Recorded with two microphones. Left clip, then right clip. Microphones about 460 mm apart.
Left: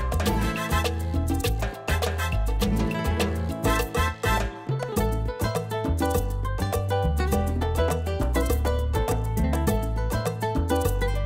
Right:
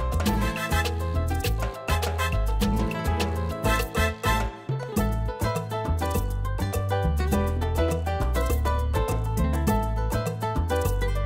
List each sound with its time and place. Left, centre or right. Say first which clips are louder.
0.2 s music: left 1 dB; left